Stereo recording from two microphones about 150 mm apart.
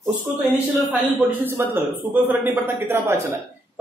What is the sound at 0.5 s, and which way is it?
A man's voice, 10° right (ahead or behind).